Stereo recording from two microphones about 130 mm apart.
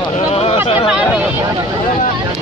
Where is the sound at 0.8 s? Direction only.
5° right (ahead or behind).